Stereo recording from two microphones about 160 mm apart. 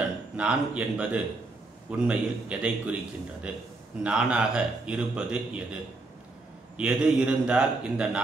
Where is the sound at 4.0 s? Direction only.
5° right (ahead or behind).